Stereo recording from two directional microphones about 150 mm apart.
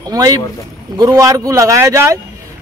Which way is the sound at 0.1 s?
25° right (ahead or behind).